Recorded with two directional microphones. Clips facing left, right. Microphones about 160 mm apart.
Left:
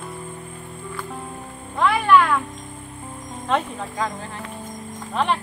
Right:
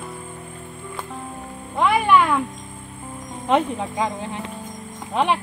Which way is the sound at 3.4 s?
15° right (ahead or behind).